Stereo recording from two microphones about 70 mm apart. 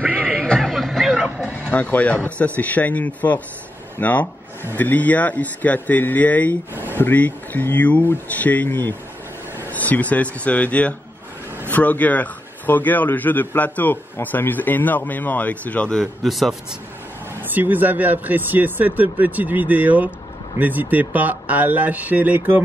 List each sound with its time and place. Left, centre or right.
0.0 s music: centre
1.4 s a sound: centre
2.2 s a man's voice: left
6.7 s a sound: right
7.0 s a man's voice: left
15.9 s speech: centre
17.4 s speech: right